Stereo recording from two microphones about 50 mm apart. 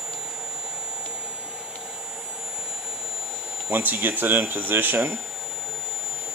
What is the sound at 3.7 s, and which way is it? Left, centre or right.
Speech, right.